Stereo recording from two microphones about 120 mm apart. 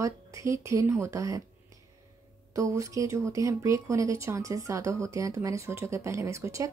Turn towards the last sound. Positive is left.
turn(degrees=-25)  # may be behind; listen again after turning